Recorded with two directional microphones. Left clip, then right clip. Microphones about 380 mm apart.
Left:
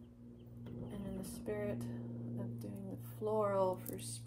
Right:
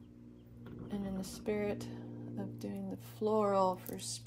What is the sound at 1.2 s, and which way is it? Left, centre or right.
Speech, right.